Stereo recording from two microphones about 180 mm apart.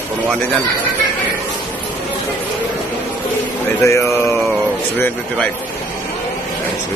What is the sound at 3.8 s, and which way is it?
Speech, 15° left (ahead or behind).